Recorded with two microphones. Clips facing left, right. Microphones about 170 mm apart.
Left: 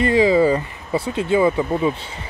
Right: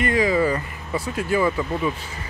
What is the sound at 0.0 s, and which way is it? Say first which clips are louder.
Speech: left 5 dB; 30° left (ahead or behind).